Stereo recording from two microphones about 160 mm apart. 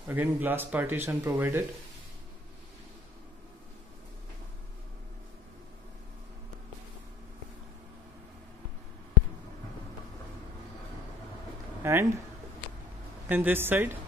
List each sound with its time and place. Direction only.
0.1 s speech: 10° right (ahead or behind)
11.8 s speech: 20° right (ahead or behind)
13.3 s speech: 10° right (ahead or behind)